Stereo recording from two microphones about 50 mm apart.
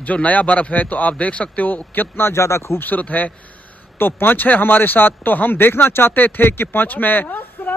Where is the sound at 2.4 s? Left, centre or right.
Left.